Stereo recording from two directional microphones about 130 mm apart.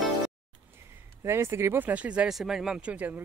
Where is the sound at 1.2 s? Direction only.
20° right (ahead or behind).